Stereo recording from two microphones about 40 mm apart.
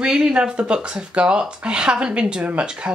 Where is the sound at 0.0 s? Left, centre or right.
Right.